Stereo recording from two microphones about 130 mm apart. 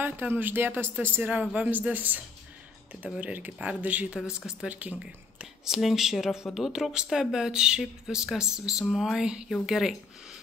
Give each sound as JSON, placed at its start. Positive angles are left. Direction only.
{"t": 0.0, "sound": "speech", "side_deg": -15}